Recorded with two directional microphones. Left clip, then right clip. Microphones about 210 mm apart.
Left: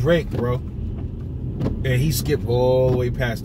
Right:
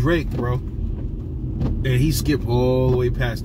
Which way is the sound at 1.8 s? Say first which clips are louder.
Right 2 dB; 5° left (ahead or behind).